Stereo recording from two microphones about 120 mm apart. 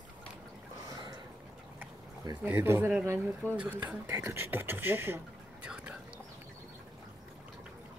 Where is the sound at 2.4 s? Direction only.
20° right (ahead or behind).